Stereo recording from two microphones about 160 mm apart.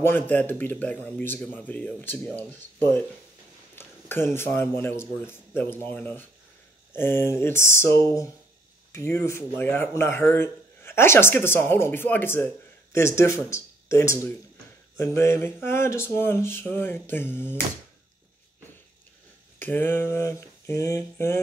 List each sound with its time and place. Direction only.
0.0 s a man's voice: 15° left (ahead or behind)
9.1 s a man's voice: 20° left (ahead or behind)
19.6 s a man's voice: 10° left (ahead or behind)